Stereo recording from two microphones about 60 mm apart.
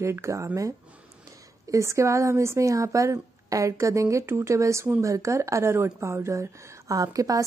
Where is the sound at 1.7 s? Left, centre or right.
Right.